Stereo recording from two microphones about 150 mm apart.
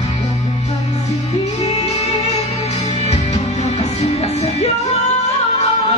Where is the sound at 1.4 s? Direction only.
45° left (ahead or behind).